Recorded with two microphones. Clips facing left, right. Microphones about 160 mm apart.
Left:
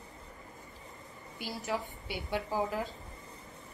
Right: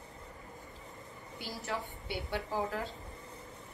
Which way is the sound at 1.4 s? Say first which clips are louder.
Left 3 dB; 15° left (ahead or behind).